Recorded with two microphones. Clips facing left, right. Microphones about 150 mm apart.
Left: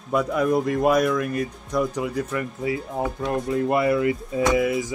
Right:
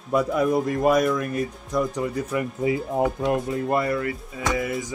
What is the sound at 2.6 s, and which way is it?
Speech, 25° right (ahead or behind).